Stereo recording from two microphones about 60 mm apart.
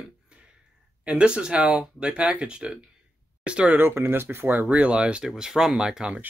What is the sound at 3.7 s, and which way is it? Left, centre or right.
Speech, right.